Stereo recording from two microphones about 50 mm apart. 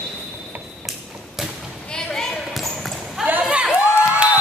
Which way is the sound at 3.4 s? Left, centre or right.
Centre.